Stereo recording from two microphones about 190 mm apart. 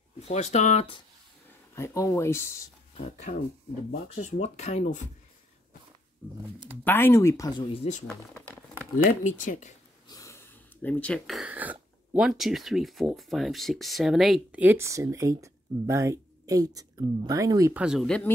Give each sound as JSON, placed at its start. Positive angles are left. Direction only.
{"t": 0.2, "sound": "speech", "side_deg": 35}
{"t": 1.8, "sound": "speech", "side_deg": 15}
{"t": 3.0, "sound": "speech", "side_deg": 35}
{"t": 6.8, "sound": "speech", "side_deg": 10}
{"t": 7.7, "sound": "speech", "side_deg": 30}
{"t": 10.0, "sound": "snort", "side_deg": 20}
{"t": 10.8, "sound": "speech", "side_deg": 10}
{"t": 17.8, "sound": "speech", "side_deg": 0}